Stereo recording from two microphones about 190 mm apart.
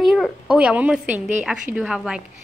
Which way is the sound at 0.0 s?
Centre (ahead or behind).